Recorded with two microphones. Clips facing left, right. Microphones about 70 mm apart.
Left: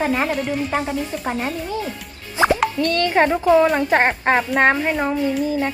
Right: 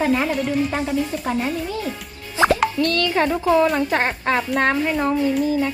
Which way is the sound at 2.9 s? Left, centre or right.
Left.